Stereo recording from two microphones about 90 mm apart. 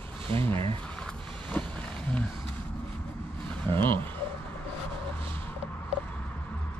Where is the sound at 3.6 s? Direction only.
20° left (ahead or behind).